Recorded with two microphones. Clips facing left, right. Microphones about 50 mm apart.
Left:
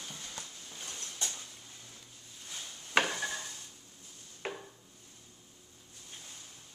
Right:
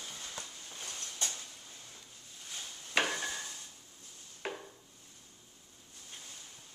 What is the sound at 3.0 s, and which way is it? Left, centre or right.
Stir, centre.